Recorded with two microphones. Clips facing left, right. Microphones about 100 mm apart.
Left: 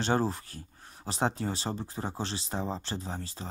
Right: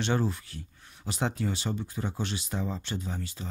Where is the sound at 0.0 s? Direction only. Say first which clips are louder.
Left 1 dB; 40° left (ahead or behind).